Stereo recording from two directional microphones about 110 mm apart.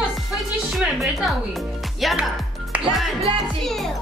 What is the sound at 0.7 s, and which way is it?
A woman's voice, centre (ahead or behind).